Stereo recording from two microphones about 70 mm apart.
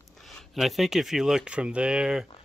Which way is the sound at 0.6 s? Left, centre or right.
Centre.